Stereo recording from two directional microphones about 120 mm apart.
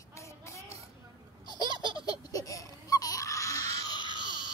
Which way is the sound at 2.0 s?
30° left (ahead or behind).